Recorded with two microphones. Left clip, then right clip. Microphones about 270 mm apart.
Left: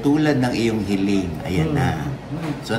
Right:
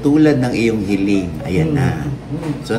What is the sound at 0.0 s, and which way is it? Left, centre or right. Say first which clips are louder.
A man's voice: right 5 dB; centre.